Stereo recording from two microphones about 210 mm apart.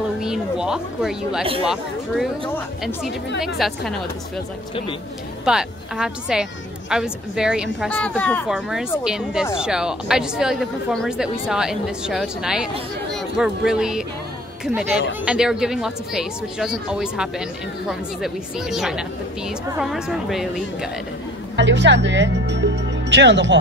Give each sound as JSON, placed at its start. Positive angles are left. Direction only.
{"t": 0.2, "sound": "speech", "side_deg": -5}
{"t": 1.4, "sound": "speech", "side_deg": -25}
{"t": 1.7, "sound": "speech", "side_deg": 0}
{"t": 5.4, "sound": "speech", "side_deg": -5}
{"t": 21.5, "sound": "speech", "side_deg": -55}